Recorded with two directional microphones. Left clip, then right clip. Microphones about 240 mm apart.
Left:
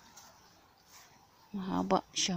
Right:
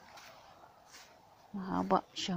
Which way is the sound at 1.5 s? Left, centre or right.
Centre.